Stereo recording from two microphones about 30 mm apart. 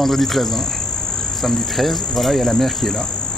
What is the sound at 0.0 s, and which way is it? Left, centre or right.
Speech, centre.